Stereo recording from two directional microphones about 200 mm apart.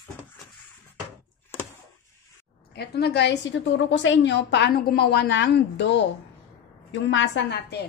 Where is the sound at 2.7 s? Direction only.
55° left (ahead or behind).